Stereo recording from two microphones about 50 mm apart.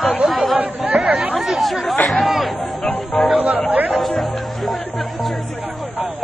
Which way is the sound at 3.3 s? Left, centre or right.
Right.